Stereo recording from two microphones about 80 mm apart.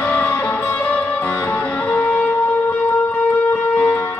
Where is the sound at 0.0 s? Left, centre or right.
Left.